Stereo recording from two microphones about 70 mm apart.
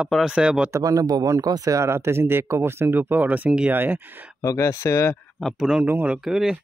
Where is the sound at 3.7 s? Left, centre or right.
Right.